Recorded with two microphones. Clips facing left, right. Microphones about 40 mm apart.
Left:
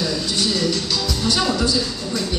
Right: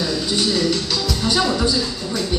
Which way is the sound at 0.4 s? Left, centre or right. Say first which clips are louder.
Right 2 dB; centre.